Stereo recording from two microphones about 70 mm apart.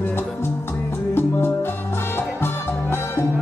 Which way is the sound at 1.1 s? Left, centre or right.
Left.